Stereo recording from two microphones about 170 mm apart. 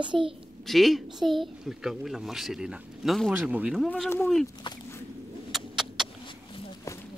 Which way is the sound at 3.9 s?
10° left (ahead or behind).